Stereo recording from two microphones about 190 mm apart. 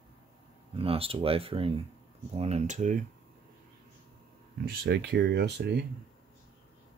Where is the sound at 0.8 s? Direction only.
30° right (ahead or behind).